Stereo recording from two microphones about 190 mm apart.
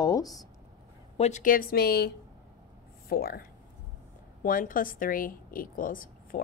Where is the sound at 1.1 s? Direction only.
35° left (ahead or behind); by 2.1 s 55° left (ahead or behind).